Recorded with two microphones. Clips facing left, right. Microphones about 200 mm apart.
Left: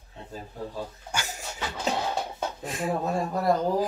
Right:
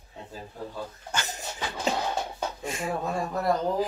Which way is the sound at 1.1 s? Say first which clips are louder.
Right 1 dB; 10° left (ahead or behind).